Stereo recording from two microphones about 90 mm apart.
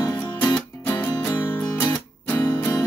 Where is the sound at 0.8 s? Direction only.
20° left (ahead or behind).